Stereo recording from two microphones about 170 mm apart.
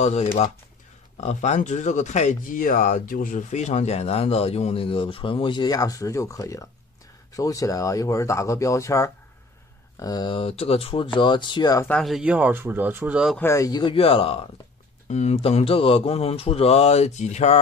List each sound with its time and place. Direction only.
0.0 s speech: 40° left (ahead or behind); by 11.9 s 20° left (ahead or behind)
11.9 s speech: centre (ahead or behind)
13.4 s speech: 15° left (ahead or behind); by 17.6 s 40° left (ahead or behind)